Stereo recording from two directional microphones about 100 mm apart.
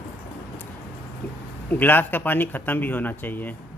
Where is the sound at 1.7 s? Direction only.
20° left (ahead or behind).